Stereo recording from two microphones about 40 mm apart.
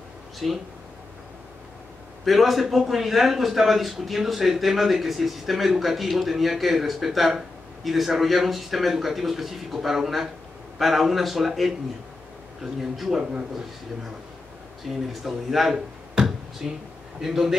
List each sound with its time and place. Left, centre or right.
0.4 s a man's voice: centre
2.2 s a man's voice: centre
12.9 s a man's voice: centre
13.2 s a man's voice: right
14.9 s a man's voice: centre
16.3 s a sound: centre
17.2 s speech: centre